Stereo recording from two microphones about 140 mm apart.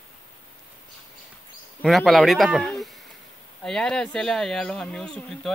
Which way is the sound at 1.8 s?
Centre (ahead or behind).